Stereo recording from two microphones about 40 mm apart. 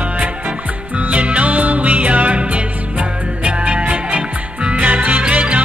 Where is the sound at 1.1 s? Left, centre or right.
Right.